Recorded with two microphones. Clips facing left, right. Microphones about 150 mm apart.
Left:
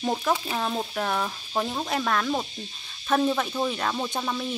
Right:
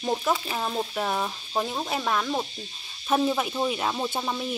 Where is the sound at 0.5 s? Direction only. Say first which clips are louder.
Even; 5° right (ahead or behind).